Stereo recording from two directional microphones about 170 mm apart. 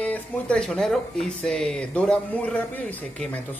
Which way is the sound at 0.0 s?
5° left (ahead or behind).